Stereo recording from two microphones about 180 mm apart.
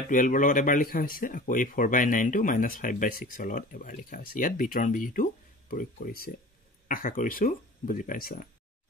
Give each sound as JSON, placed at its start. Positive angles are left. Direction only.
{"t": 0.1, "sound": "speech", "side_deg": 45}